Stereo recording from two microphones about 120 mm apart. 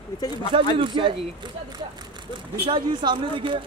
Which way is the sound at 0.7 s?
45° right (ahead or behind).